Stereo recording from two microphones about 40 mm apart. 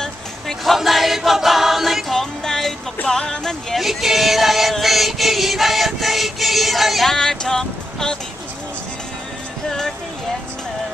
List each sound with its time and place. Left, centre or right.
0.7 s choir: centre
2.1 s music: centre
3.7 s music: centre
7.1 s music: centre
9.7 s music: centre